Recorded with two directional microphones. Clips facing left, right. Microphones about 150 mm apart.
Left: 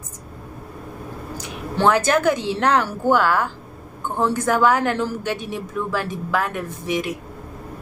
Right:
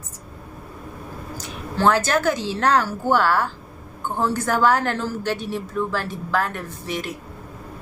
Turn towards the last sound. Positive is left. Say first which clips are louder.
# left 5 dB
turn(degrees=15)  # may be behind; listen again after turning